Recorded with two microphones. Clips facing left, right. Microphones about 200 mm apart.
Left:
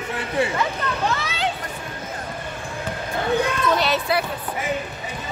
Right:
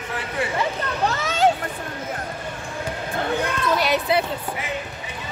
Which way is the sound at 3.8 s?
15° right (ahead or behind).